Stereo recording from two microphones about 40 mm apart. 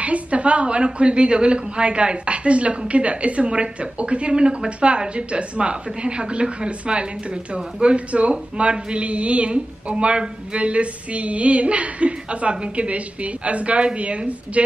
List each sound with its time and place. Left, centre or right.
0.0 s a woman's voice: right